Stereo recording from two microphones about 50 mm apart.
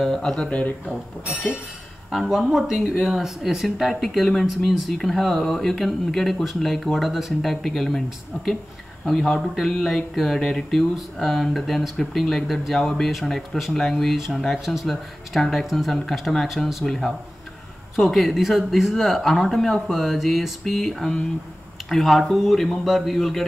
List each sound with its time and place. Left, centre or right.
0.2 s speech: centre
0.5 s speech: left
2.0 s speech: centre
3.6 s speech: centre
4.6 s speech: centre
9.2 s speech: centre
16.8 s speech: centre